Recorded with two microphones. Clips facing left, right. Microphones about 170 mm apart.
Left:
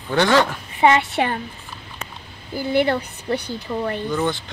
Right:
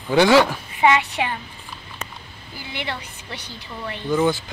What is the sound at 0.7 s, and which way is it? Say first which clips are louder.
Speech: left 2 dB; 40° left (ahead or behind).